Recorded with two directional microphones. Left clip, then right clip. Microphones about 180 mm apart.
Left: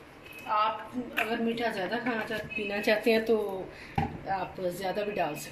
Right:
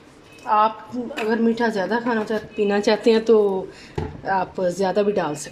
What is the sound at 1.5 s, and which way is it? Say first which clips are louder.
A woman's voice: right 9 dB; 55° right (ahead or behind).